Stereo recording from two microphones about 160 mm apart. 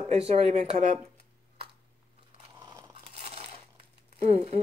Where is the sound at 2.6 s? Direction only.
20° right (ahead or behind).